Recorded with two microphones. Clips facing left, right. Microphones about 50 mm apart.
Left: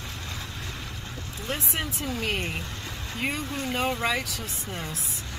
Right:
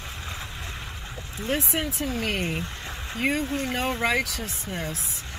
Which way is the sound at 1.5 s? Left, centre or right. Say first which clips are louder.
Right 4 dB; centre.